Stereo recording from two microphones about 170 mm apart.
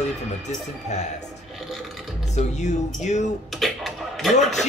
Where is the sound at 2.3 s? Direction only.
45° left (ahead or behind).